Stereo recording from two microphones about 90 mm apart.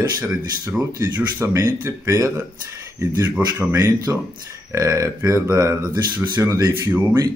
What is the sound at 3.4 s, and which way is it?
Speech, 15° right (ahead or behind).